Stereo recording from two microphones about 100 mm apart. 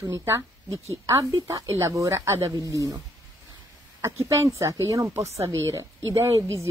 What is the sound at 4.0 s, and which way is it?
Speech, 30° right (ahead or behind).